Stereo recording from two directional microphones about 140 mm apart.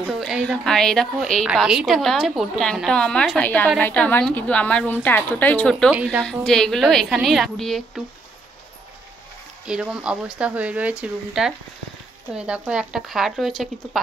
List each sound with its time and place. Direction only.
0.0 s a woman's voice: 5° right (ahead or behind)
9.7 s a woman's voice: 5° right (ahead or behind)